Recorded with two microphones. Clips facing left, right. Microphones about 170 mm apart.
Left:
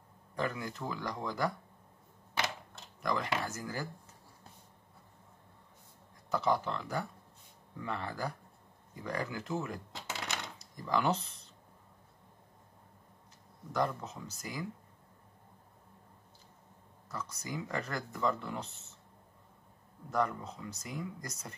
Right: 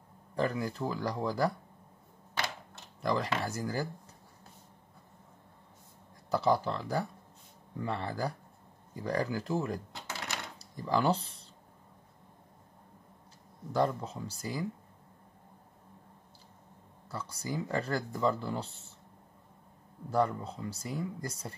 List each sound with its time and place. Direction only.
0.4 s speech: 35° right (ahead or behind)
3.0 s speech: 30° right (ahead or behind)
6.3 s speech: 35° right (ahead or behind)
13.7 s speech: 30° right (ahead or behind)
17.1 s speech: 30° right (ahead or behind)
20.1 s speech: 30° right (ahead or behind)